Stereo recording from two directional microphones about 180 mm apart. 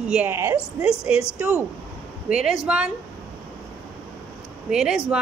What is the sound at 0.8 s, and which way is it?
A woman's voice, 5° right (ahead or behind).